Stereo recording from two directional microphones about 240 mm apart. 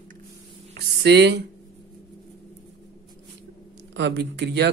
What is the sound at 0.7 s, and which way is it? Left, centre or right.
Speech, right.